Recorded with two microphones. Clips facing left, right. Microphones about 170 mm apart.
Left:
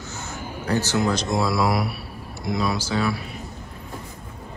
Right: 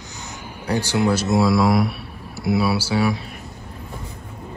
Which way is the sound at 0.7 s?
15° right (ahead or behind).